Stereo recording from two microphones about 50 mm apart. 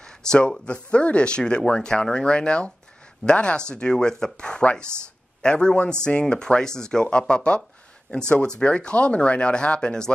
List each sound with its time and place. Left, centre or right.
0.0 s speech: centre